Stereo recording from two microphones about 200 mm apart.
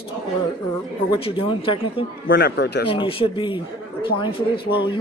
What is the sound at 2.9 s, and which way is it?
Speech, 25° left (ahead or behind).